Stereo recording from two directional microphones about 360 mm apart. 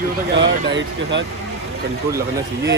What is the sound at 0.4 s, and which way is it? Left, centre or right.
Speech, right.